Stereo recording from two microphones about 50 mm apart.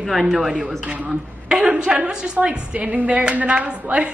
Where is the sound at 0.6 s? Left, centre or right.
Centre.